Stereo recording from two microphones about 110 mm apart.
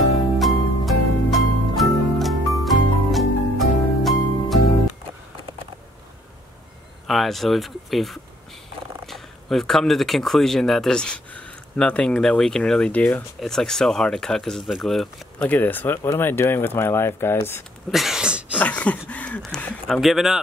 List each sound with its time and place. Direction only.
0.4 s music: centre (ahead or behind)
7.1 s speech: centre (ahead or behind)
15.4 s speech: 15° left (ahead or behind)
17.9 s a sound: 5° right (ahead or behind)
18.6 s a sound: 15° left (ahead or behind)
19.9 s speech: centre (ahead or behind)